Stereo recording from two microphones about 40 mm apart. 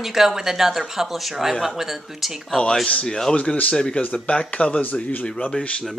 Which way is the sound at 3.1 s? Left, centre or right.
Centre.